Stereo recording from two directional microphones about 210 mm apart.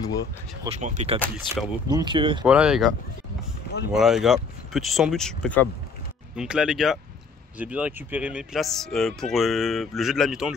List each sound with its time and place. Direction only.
0.0 s speech: 15° left (ahead or behind)
0.7 s speech: 35° right (ahead or behind)
1.9 s speech: 20° right (ahead or behind)
2.4 s speech: 5° right (ahead or behind)
3.9 s speech: centre (ahead or behind)